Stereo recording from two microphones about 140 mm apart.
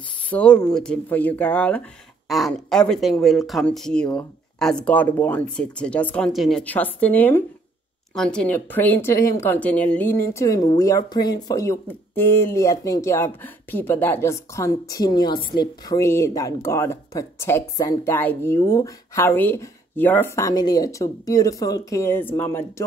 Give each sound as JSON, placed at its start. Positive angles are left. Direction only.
{"t": 0.3, "sound": "speech", "side_deg": 10}
{"t": 2.2, "sound": "speech", "side_deg": 0}
{"t": 6.6, "sound": "speech", "side_deg": 10}